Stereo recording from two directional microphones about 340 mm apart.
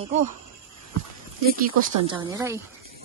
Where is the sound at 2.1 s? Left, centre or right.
Centre.